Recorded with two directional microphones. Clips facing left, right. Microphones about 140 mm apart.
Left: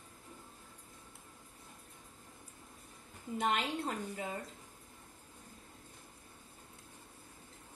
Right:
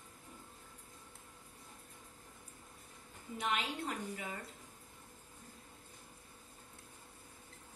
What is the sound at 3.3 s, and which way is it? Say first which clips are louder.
A woman's voice: left 4 dB; 35° left (ahead or behind).